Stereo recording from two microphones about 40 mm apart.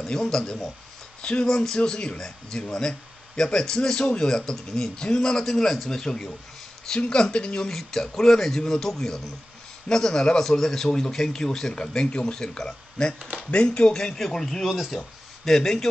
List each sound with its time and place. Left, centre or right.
0.1 s speech: centre
2.1 s speech: centre
7.6 s speech: centre
14.7 s speech: centre